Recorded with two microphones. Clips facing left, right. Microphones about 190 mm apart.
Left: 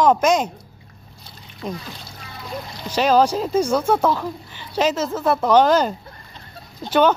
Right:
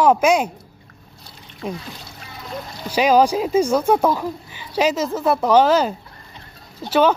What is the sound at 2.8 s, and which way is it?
Speech, 10° right (ahead or behind).